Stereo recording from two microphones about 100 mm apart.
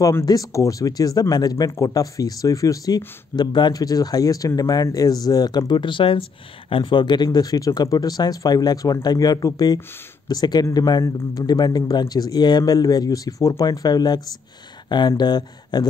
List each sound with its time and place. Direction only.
0.0 s speech: 35° left (ahead or behind)
3.3 s speech: 50° left (ahead or behind)